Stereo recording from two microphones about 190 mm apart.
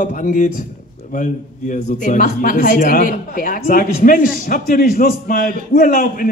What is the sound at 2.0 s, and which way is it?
Speech, 45° left (ahead or behind).